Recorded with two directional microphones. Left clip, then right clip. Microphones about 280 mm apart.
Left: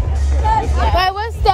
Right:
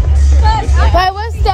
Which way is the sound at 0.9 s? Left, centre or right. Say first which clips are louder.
Right 5 dB; centre.